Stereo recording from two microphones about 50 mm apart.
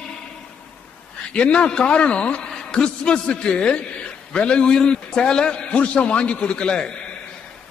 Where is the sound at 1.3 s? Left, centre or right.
Left.